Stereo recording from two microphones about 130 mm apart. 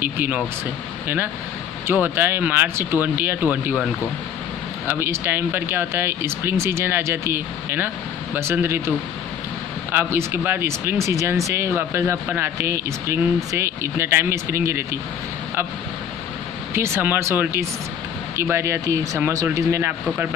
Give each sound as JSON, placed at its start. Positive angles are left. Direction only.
{"t": 0.0, "sound": "speech", "side_deg": -15}
{"t": 9.9, "sound": "speech", "side_deg": -20}
{"t": 16.7, "sound": "speech", "side_deg": -20}